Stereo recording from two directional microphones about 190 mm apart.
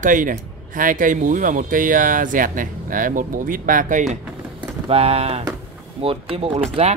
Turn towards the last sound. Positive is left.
turn(degrees=-35)  # may be behind; listen again after turning